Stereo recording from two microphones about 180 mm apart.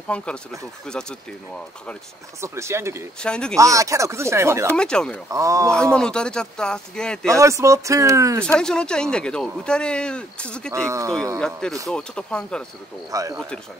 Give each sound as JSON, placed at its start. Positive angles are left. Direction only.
{"t": 0.1, "sound": "speech", "side_deg": 5}
{"t": 2.4, "sound": "speech", "side_deg": -15}
{"t": 3.2, "sound": "speech", "side_deg": 5}
{"t": 3.5, "sound": "speech", "side_deg": -20}
{"t": 4.7, "sound": "speech", "side_deg": 5}
{"t": 5.3, "sound": "speech", "side_deg": -20}
{"t": 5.9, "sound": "speech", "side_deg": 5}
{"t": 7.2, "sound": "speech", "side_deg": -15}
{"t": 8.5, "sound": "speech", "side_deg": 5}
{"t": 10.7, "sound": "speech", "side_deg": -15}
{"t": 11.3, "sound": "speech", "side_deg": 5}
{"t": 13.1, "sound": "speech", "side_deg": -20}